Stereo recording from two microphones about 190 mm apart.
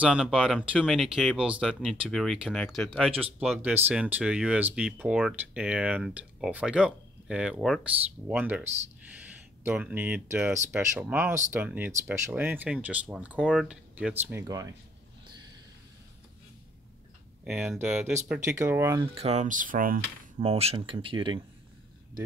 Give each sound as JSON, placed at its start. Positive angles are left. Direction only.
{"t": 0.0, "sound": "speech", "side_deg": -5}
{"t": 17.5, "sound": "speech", "side_deg": -5}
{"t": 19.1, "sound": "speech", "side_deg": -35}
{"t": 20.3, "sound": "speech", "side_deg": -30}